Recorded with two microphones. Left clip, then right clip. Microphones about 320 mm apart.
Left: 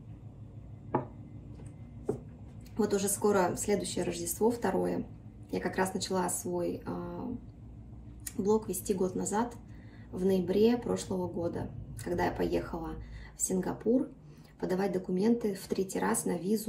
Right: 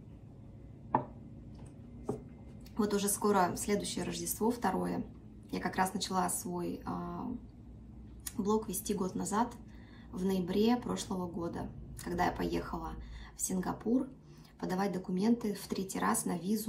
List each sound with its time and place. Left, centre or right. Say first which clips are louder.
2.8 s speech: left 3 dB; centre
4.1 s speech: left 3 dB; right
4.5 s speech: left 3 dB; centre
8.4 s speech: left 4 dB; centre